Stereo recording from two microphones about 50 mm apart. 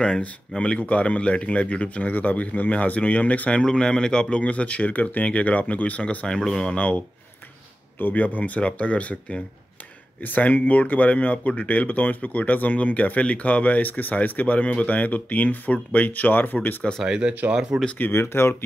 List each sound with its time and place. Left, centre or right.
0.6 s speech: left
3.6 s speech: centre
8.0 s speech: left
10.2 s speech: left
17.0 s speech: centre
17.3 s speech: right
18.1 s speech: left